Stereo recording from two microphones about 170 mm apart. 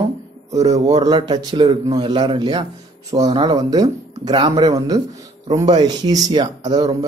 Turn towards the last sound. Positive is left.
turn(degrees=-25)  # may be behind; listen again after turning